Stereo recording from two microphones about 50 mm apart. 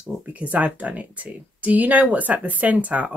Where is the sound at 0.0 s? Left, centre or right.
Right.